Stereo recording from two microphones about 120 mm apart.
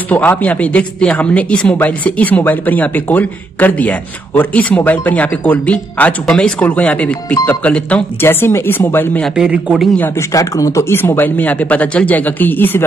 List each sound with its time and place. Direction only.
0.1 s a woman's voice: 15° left (ahead or behind)
9.3 s a man's voice: 5° right (ahead or behind)
9.9 s a woman's voice: 15° left (ahead or behind)
10.3 s a woman's voice: 25° left (ahead or behind)